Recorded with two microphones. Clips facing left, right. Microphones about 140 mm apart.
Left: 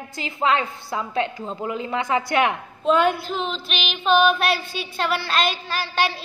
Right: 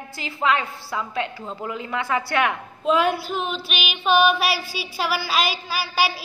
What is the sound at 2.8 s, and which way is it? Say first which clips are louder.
Female singing: left 1 dB; centre (ahead or behind).